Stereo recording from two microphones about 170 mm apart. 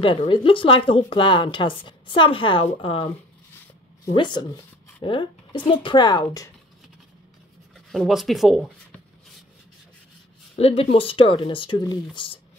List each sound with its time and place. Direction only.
0.0 s speech: 30° left (ahead or behind)
7.9 s speech: centre (ahead or behind)
10.5 s speech: 35° left (ahead or behind)